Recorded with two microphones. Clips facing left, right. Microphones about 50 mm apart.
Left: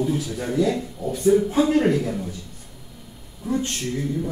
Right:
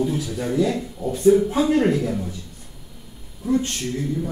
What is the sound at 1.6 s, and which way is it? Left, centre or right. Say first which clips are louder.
Speech: even; centre.